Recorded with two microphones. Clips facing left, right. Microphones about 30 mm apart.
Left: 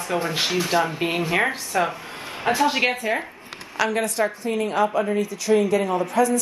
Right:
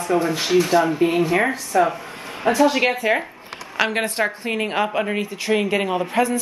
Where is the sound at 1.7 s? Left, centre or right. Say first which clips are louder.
Right 5 dB; left.